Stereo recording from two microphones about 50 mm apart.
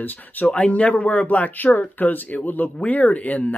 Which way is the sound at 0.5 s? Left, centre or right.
Left.